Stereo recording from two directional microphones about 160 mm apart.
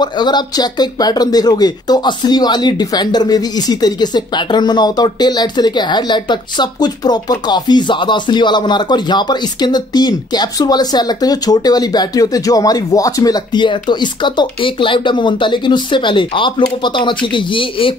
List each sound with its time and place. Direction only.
0.0 s speech: 25° left (ahead or behind)